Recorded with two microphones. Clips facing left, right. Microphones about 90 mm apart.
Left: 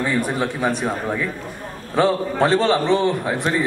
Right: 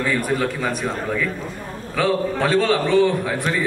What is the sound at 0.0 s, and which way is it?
A man's voice, 20° left (ahead or behind).